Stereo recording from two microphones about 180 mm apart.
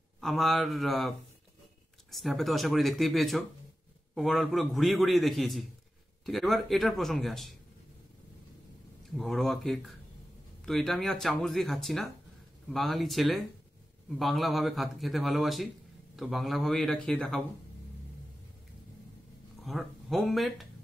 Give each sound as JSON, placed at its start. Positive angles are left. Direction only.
{"t": 0.2, "sound": "speech", "side_deg": 0}
{"t": 9.1, "sound": "speech", "side_deg": 0}
{"t": 19.6, "sound": "speech", "side_deg": 0}